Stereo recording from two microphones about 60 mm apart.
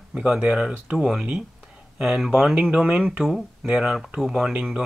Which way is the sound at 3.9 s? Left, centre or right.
Centre.